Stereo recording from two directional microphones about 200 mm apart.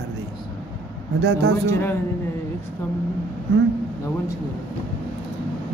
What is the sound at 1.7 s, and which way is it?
Speech, 10° left (ahead or behind).